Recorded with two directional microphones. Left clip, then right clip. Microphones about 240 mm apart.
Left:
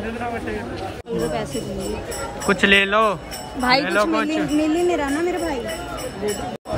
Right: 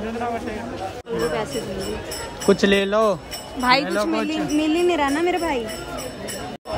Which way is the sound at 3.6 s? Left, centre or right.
Centre.